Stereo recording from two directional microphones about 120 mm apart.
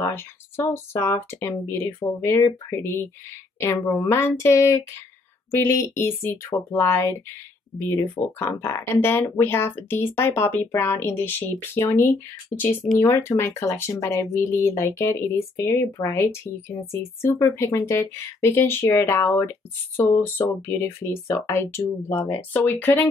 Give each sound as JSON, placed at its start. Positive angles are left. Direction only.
{"t": 0.7, "sound": "speech", "side_deg": 20}